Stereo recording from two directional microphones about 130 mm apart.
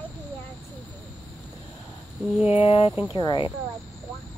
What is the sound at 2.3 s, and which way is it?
Speech, 10° right (ahead or behind).